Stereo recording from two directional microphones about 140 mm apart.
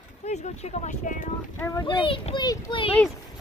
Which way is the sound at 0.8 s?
60° left (ahead or behind).